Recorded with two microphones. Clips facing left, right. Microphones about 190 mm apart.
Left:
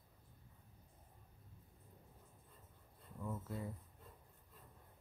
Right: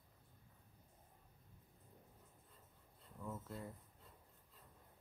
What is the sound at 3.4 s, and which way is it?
Speech, centre (ahead or behind).